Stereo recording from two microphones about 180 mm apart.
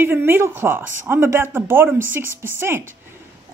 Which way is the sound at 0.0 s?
10° right (ahead or behind).